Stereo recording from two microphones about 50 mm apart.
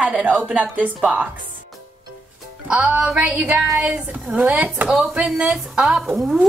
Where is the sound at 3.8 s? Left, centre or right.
Centre.